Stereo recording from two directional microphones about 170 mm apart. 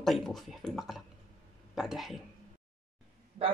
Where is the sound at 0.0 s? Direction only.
Centre (ahead or behind).